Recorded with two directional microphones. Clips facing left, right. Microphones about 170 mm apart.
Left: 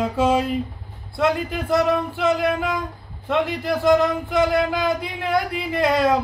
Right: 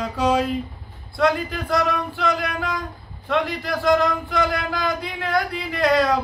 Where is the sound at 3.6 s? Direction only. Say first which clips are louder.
Left 3 dB; 25° left (ahead or behind).